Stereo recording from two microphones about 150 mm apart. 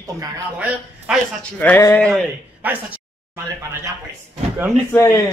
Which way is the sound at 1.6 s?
15° left (ahead or behind).